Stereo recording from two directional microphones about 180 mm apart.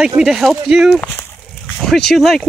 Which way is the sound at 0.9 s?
5° left (ahead or behind).